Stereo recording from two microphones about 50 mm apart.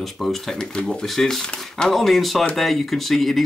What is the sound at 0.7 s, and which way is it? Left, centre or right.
Speech, centre.